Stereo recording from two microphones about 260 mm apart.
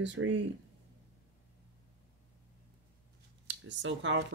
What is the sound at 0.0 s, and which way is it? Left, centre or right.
Speech, right.